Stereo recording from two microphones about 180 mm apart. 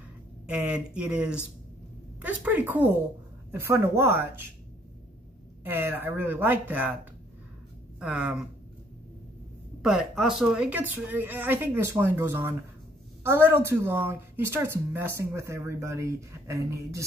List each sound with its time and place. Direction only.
0.5 s a woman's voice: 5° right (ahead or behind)
5.6 s a woman's voice: 10° right (ahead or behind)
8.0 s speech: 5° right (ahead or behind)
9.8 s a woman's voice: 5° right (ahead or behind)